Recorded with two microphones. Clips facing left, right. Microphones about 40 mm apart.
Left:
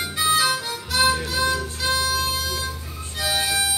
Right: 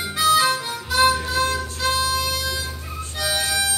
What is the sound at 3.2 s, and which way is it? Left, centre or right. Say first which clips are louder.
Harmonica: even; centre.